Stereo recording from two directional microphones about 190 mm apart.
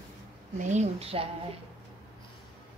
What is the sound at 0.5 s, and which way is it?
Speech, 40° right (ahead or behind).